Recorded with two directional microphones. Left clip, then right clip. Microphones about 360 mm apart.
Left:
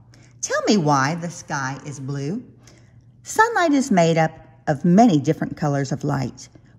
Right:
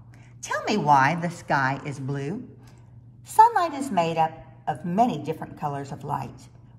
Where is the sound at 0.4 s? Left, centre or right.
Centre.